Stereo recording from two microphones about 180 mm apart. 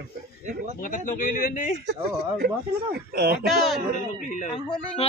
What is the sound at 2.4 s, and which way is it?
Speech, 60° right (ahead or behind).